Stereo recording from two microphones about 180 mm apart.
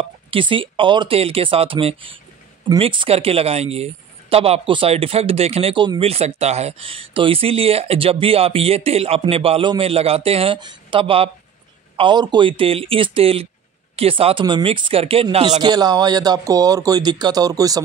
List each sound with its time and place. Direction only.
0.0 s speech: 30° right (ahead or behind)